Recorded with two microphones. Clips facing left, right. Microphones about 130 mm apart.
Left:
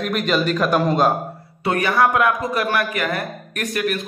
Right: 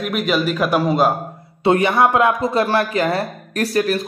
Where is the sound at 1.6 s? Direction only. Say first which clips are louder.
Right 3 dB; 25° right (ahead or behind).